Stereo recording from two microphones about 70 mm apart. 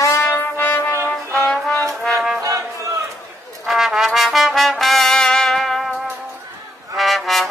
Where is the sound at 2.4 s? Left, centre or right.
Right.